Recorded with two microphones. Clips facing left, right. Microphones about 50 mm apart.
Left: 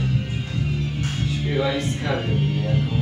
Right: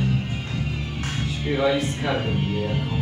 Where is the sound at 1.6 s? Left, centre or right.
Centre.